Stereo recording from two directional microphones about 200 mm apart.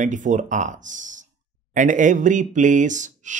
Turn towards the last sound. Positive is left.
turn(degrees=-40)  # may be behind; listen again after turning